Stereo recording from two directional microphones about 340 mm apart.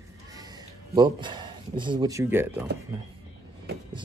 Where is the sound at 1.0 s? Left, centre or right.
Centre.